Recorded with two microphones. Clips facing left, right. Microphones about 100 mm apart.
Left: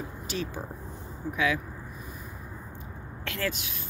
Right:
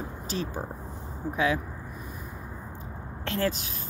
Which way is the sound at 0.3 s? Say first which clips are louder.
Right 2 dB; 35° right (ahead or behind).